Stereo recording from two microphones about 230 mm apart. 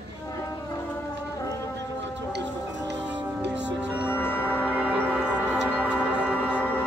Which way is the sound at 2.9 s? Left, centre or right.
Right.